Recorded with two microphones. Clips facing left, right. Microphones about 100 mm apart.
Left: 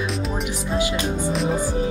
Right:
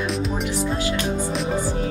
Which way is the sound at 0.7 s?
15° left (ahead or behind).